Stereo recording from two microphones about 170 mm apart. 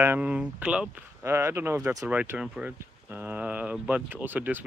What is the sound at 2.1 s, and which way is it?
Speech, 10° right (ahead or behind).